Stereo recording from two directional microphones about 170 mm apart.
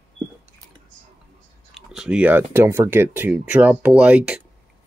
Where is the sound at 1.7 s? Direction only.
5° right (ahead or behind).